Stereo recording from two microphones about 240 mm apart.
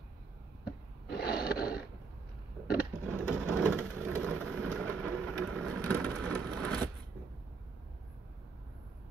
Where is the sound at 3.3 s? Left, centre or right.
Centre.